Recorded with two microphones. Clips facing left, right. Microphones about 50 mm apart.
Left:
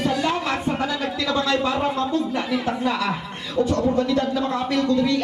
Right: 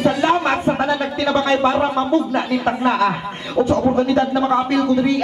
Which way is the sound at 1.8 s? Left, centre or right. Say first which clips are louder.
Right 5 dB; right.